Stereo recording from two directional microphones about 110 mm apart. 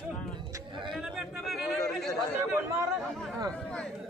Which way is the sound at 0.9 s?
5° right (ahead or behind).